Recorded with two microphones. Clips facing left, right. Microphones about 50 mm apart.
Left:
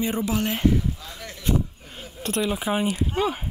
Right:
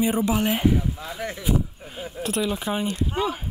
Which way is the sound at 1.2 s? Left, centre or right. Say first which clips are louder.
Right 8 dB; right.